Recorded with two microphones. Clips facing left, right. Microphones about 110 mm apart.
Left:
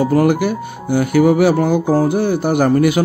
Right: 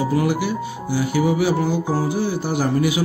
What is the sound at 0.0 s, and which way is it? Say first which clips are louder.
Speech: left 6 dB; 55° left (ahead or behind).